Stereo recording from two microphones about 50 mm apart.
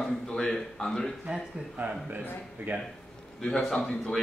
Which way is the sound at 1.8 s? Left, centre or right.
Right.